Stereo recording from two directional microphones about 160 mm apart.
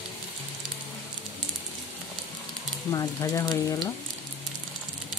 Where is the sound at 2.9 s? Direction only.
20° left (ahead or behind).